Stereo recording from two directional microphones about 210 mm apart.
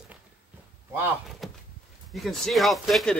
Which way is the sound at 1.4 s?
Centre (ahead or behind).